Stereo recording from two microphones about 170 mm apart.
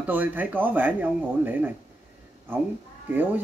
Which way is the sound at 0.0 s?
10° right (ahead or behind).